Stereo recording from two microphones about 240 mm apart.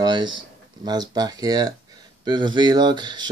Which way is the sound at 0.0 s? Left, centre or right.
Centre.